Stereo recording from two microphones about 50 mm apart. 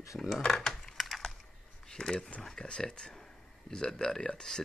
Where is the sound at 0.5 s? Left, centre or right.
Centre.